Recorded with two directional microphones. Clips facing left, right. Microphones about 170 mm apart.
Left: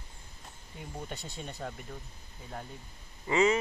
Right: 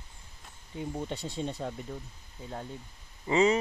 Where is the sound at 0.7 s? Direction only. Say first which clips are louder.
Right 7 dB; 25° right (ahead or behind).